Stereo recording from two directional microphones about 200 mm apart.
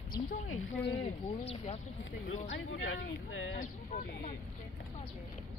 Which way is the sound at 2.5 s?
75° left (ahead or behind).